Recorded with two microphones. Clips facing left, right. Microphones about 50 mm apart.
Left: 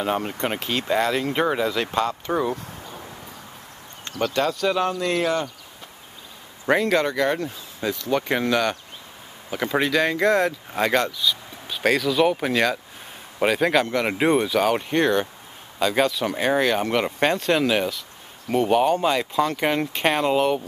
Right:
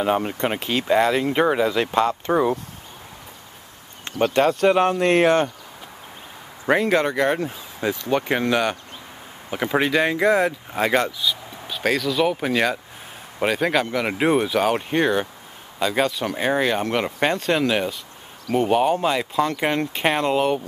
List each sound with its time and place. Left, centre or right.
0.0 s speech: centre
1.7 s speech: centre
4.0 s speech: right
6.6 s speech: centre